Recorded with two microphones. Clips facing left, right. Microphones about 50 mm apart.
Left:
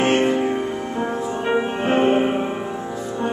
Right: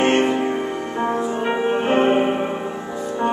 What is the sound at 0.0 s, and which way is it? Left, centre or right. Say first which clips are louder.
Music: even; centre.